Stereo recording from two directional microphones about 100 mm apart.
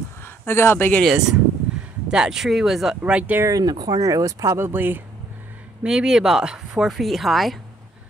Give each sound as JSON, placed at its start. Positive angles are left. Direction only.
{"t": 0.2, "sound": "speech", "side_deg": 25}
{"t": 1.0, "sound": "speech", "side_deg": -5}
{"t": 3.0, "sound": "speech", "side_deg": -15}
{"t": 3.4, "sound": "speech", "side_deg": -40}
{"t": 5.9, "sound": "speech", "side_deg": -5}